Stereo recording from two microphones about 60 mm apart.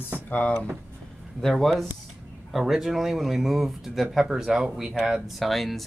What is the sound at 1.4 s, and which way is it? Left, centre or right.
Speech, centre.